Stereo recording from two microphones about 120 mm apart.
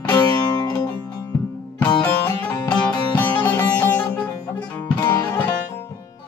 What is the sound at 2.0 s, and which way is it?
Music, 15° left (ahead or behind).